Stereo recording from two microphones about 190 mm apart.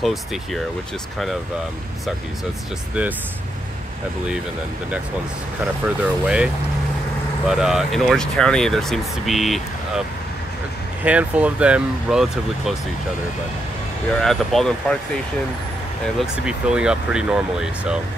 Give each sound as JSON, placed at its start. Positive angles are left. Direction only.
{"t": 0.0, "sound": "speech", "side_deg": 0}
{"t": 2.9, "sound": "speech", "side_deg": -5}
{"t": 6.2, "sound": "speech", "side_deg": -5}
{"t": 11.1, "sound": "speech", "side_deg": -5}
{"t": 14.1, "sound": "speech", "side_deg": 0}
{"t": 16.2, "sound": "speech", "side_deg": -5}